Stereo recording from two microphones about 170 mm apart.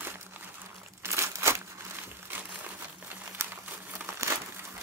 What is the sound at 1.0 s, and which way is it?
Crumpling, 15° right (ahead or behind).